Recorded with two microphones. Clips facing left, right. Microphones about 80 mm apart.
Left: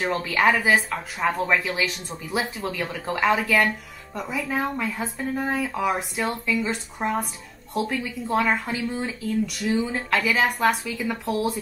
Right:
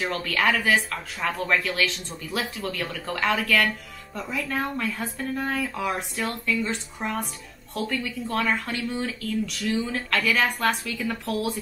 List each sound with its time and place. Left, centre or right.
0.0 s speech: centre
1.3 s speech: centre
7.0 s speech: left
7.7 s speech: centre
9.3 s speech: centre